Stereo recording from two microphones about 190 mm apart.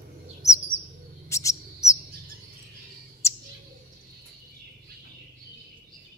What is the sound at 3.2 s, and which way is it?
Bird, 15° left (ahead or behind).